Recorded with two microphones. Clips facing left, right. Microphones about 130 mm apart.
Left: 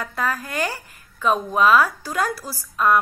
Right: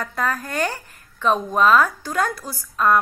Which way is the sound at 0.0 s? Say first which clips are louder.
Right 1 dB; 5° left (ahead or behind).